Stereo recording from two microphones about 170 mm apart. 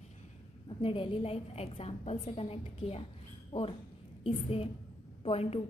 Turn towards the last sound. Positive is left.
turn(degrees=35)  # may be behind; listen again after turning